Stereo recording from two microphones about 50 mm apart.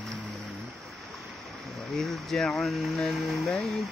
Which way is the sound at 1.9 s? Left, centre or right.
Centre.